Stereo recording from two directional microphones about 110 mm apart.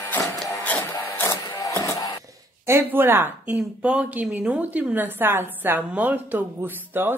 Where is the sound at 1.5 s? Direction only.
35° left (ahead or behind).